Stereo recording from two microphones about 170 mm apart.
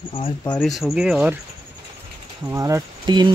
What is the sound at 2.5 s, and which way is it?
Speech, 20° right (ahead or behind).